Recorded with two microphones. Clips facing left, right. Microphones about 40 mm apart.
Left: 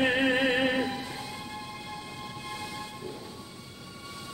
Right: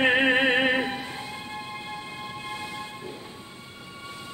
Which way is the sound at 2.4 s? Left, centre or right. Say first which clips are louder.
Right 2 dB; right.